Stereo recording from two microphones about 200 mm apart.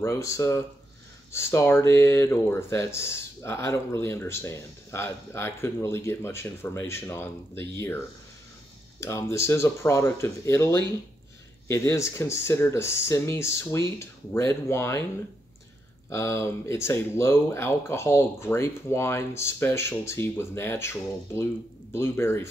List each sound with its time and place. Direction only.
0.0 s speech: 15° left (ahead or behind)
9.0 s speech: 15° left (ahead or behind)
16.1 s speech: 15° left (ahead or behind)